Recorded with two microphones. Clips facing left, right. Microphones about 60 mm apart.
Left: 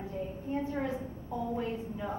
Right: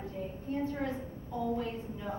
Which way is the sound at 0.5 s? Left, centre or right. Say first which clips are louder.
Left 1 dB; centre.